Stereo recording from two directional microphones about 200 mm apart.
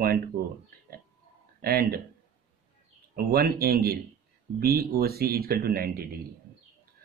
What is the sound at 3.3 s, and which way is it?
Speech, 50° right (ahead or behind).